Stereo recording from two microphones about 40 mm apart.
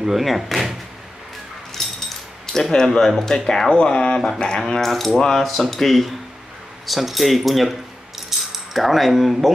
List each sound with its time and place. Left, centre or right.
0.0 s speech: centre
1.8 s dog: centre
2.4 s speech: centre
3.8 s speech: left; by 7.7 s centre
8.3 s keys jangling: centre